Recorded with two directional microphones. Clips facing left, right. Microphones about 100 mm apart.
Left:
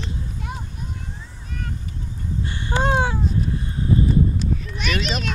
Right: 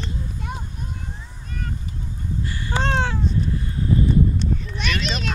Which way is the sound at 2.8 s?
10° left (ahead or behind).